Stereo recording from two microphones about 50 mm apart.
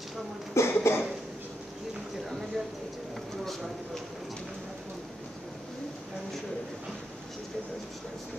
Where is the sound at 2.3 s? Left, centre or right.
Centre.